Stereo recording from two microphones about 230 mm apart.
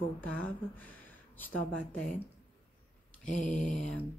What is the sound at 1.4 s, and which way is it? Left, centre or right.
Speech, centre.